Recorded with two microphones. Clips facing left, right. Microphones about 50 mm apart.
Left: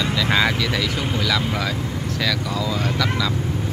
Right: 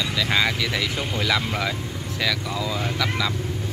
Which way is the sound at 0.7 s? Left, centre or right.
Centre.